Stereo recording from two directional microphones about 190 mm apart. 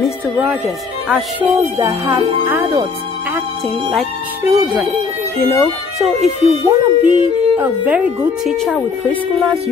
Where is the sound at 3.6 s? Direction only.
Centre (ahead or behind).